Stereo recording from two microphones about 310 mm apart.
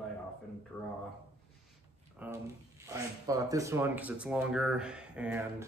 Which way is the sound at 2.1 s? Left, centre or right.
Centre.